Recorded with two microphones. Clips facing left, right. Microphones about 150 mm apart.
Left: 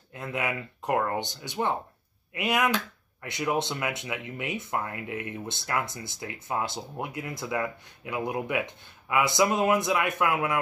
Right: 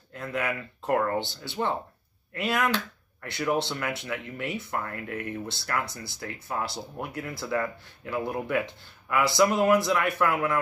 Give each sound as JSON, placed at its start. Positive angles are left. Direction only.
{"t": 0.1, "sound": "speech", "side_deg": 20}